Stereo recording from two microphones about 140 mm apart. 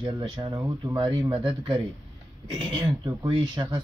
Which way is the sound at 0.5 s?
20° right (ahead or behind).